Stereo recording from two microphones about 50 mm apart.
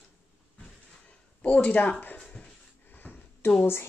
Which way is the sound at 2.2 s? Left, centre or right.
Centre.